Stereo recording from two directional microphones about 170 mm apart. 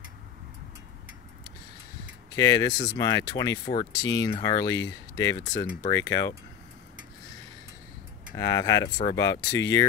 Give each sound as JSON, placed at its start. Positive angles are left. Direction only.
{"t": 2.3, "sound": "speech", "side_deg": 20}
{"t": 8.4, "sound": "speech", "side_deg": 20}